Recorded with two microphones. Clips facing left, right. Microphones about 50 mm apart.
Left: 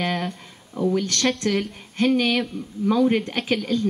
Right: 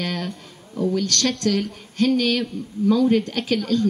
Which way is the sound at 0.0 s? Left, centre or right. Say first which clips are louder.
Left 2 dB; centre.